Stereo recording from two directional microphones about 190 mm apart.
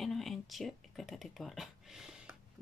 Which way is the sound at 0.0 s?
Centre (ahead or behind).